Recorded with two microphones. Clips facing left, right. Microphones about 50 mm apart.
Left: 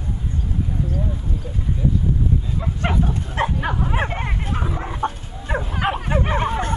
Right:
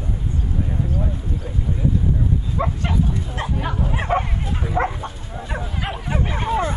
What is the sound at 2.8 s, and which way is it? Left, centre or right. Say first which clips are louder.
Bow-wow: left 1 dB; left.